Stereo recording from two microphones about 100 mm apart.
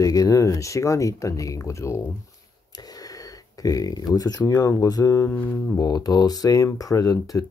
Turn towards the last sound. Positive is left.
turn(degrees=35)  # may be behind; listen again after turning